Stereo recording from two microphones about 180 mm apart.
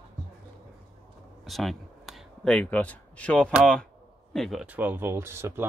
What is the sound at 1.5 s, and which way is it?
Speech, centre (ahead or behind).